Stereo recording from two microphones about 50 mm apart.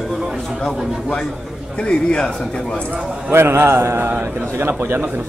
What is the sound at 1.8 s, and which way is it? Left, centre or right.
Speech, centre.